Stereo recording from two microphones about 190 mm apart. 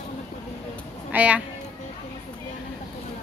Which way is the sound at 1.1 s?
5° right (ahead or behind).